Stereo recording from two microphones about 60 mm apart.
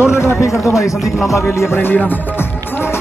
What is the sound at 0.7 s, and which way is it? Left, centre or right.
Speech, left.